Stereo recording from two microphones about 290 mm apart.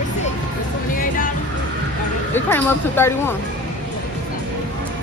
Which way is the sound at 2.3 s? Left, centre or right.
Centre.